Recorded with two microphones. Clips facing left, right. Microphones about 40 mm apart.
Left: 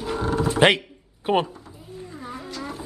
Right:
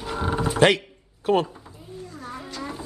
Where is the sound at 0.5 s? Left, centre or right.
Left.